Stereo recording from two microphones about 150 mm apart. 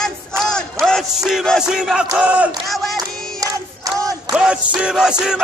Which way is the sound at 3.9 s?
20° right (ahead or behind).